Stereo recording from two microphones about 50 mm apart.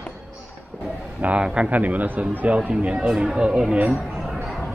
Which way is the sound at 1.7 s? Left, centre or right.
Right.